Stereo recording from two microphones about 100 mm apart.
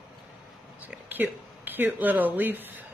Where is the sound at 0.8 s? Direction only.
20° right (ahead or behind).